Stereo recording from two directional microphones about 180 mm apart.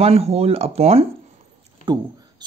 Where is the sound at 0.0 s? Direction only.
35° right (ahead or behind).